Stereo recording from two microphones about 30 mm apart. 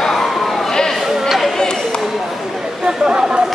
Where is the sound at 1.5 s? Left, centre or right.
Left.